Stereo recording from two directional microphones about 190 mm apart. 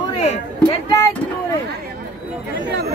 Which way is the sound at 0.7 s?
20° left (ahead or behind).